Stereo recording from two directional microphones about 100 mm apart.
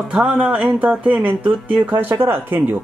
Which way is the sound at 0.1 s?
10° right (ahead or behind).